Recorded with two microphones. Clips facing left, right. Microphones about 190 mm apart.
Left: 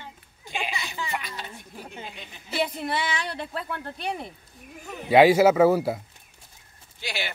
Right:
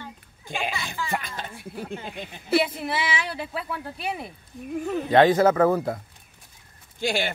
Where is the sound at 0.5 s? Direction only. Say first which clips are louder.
Right 2 dB; 50° right (ahead or behind).